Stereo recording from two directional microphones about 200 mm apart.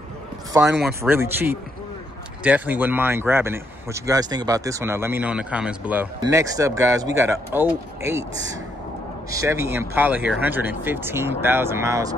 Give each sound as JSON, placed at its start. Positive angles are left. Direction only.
{"t": 0.5, "sound": "speech", "side_deg": -15}
{"t": 6.2, "sound": "speech", "side_deg": -15}
{"t": 9.3, "sound": "speech", "side_deg": -15}